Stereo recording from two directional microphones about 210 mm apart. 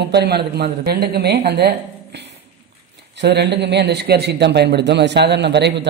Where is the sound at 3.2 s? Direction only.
55° right (ahead or behind).